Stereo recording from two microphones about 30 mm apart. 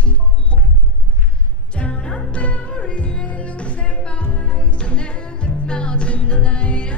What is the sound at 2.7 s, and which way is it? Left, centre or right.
Music, left.